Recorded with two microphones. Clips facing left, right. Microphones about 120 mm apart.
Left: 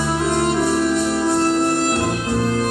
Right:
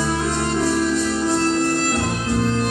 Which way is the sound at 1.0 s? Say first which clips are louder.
Left 2 dB; 15° left (ahead or behind).